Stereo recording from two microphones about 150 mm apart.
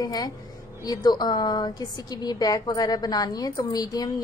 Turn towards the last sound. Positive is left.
turn(degrees=25)  # may be behind; listen again after turning